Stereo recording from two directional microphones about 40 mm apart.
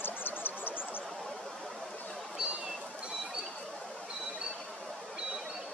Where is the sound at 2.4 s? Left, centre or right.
Right.